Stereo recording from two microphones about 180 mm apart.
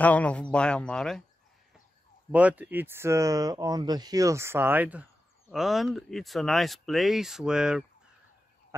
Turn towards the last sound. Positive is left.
turn(degrees=-5)  # may be behind; listen again after turning